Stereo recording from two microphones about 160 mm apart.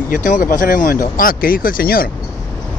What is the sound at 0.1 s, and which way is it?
Speech, 55° left (ahead or behind).